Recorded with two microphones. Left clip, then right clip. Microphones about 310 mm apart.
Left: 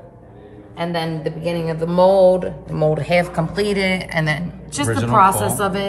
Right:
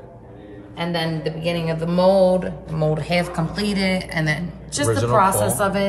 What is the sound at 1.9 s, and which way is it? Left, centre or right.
Speech, centre.